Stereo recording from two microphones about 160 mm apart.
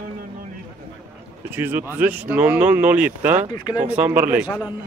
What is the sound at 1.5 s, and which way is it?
Speech, 15° right (ahead or behind).